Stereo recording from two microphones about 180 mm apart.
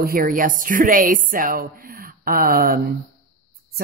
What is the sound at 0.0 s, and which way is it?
Music, 55° right (ahead or behind).